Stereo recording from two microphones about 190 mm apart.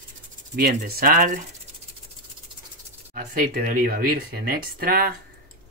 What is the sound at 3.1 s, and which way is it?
Speech, 50° right (ahead or behind).